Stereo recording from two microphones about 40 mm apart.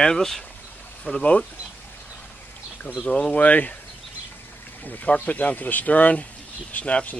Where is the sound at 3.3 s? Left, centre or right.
Left.